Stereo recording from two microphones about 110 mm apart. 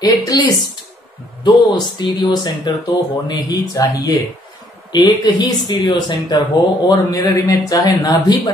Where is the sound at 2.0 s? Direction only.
40° left (ahead or behind).